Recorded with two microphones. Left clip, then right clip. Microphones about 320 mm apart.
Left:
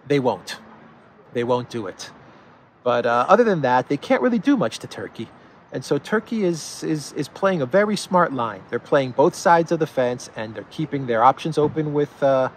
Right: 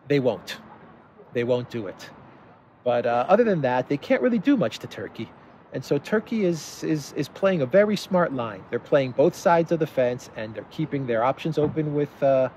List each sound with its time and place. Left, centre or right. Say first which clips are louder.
0.1 s speech: left 2 dB; centre